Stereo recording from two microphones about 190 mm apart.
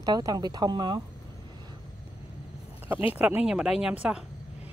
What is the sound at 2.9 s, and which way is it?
Speech, 10° right (ahead or behind).